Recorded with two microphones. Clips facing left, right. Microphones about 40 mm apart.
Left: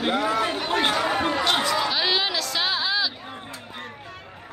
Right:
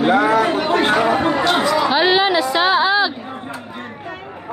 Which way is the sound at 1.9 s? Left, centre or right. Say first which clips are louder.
Right 9 dB; right.